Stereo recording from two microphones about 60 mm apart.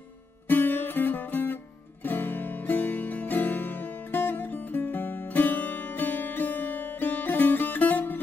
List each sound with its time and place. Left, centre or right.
0.5 s music: left